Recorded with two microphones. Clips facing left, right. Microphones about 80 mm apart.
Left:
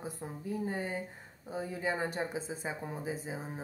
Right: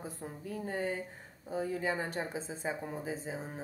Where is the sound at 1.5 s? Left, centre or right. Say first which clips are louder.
Right 1 dB; centre.